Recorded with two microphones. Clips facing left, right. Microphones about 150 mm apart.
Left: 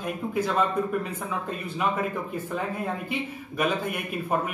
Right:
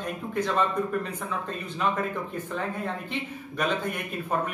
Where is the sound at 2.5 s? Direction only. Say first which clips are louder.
Left 1 dB; 10° left (ahead or behind).